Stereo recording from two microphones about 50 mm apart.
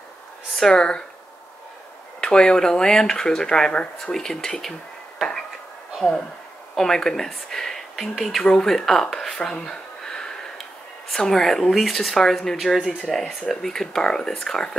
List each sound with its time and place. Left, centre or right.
0.7 s speech: centre
2.1 s speech: centre
6.0 s speech: centre
7.9 s speech: centre
9.5 s a sound: centre
11.1 s speech: centre